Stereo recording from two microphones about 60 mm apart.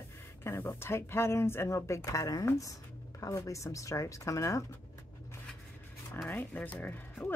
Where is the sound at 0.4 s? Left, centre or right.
Left.